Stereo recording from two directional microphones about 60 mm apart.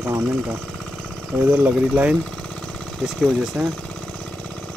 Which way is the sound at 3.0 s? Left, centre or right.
Centre.